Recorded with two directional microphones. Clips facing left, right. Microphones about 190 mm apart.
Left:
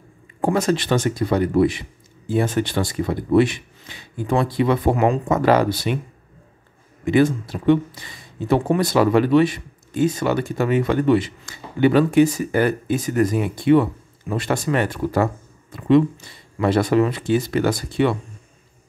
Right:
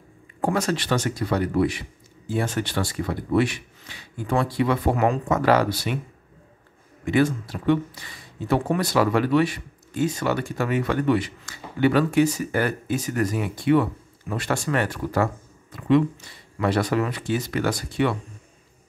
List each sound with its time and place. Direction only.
0.4 s speech: 20° left (ahead or behind)
7.1 s speech: 20° left (ahead or behind)
16.5 s speech: 25° left (ahead or behind)